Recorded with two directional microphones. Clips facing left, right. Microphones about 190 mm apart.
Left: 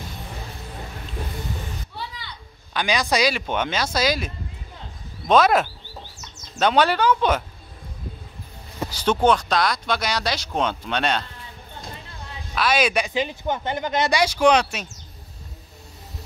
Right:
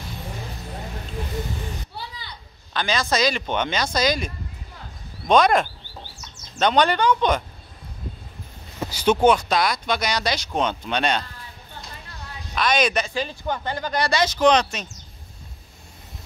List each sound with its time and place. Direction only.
2.7 s speech: 15° left (ahead or behind)
5.3 s speech: 5° left (ahead or behind)
9.0 s speech: 10° right (ahead or behind)
12.5 s speech: 5° left (ahead or behind)
14.2 s speech: 10° left (ahead or behind)